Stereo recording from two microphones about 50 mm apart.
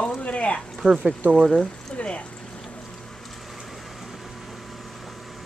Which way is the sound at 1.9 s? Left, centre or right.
Left.